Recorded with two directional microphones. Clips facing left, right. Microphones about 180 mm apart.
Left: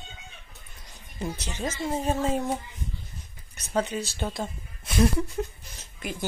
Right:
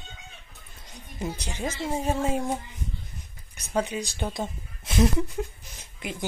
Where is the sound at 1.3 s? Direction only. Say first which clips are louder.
Even; 10° right (ahead or behind).